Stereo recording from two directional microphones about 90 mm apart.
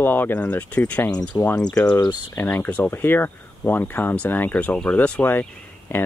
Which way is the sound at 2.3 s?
25° left (ahead or behind).